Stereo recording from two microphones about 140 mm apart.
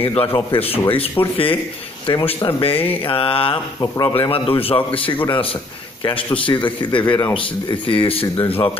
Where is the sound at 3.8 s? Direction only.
25° left (ahead or behind).